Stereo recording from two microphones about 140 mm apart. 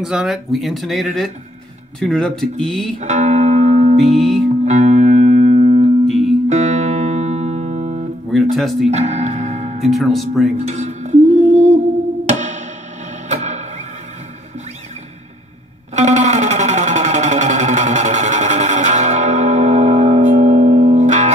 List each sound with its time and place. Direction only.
0.0 s speech: 5° right (ahead or behind)
3.0 s music: 55° right (ahead or behind)
4.2 s speech: centre (ahead or behind)
4.6 s music: 55° right (ahead or behind)
6.0 s music: centre (ahead or behind)
6.5 s music: 55° right (ahead or behind)
8.3 s speech: centre (ahead or behind)
8.9 s music: 55° right (ahead or behind)
9.8 s speech: centre (ahead or behind)
10.7 s music: 55° right (ahead or behind)
12.3 s music: 60° right (ahead or behind)
15.9 s music: 55° right (ahead or behind)